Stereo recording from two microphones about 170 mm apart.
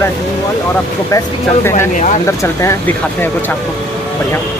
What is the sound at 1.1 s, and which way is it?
Speech, 15° left (ahead or behind).